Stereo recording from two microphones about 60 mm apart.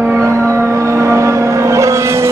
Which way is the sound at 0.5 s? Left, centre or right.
Right.